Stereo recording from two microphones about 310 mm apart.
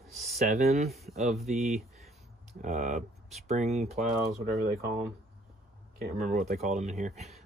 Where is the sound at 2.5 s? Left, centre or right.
Right.